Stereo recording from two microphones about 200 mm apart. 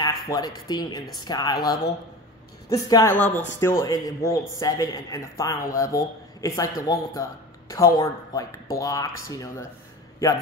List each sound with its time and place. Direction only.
0.0 s speech: 20° left (ahead or behind)